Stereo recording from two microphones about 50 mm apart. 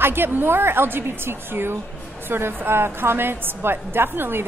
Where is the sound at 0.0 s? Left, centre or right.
Right.